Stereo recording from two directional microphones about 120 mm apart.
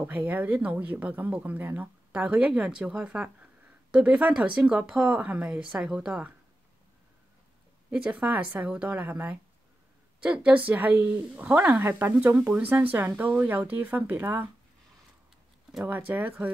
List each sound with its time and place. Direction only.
0.0 s speech: 10° right (ahead or behind)
7.9 s speech: 10° right (ahead or behind)